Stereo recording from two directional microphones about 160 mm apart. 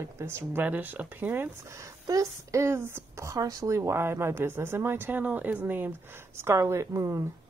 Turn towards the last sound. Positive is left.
turn(degrees=-20)  # may be behind; listen again after turning